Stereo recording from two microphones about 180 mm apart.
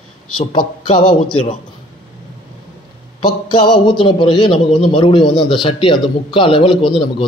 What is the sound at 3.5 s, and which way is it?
Speech, 25° left (ahead or behind).